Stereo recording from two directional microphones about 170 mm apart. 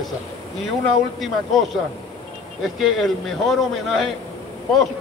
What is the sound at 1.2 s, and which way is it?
Speech, centre (ahead or behind).